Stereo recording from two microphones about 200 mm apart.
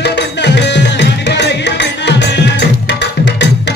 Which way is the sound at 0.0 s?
60° left (ahead or behind).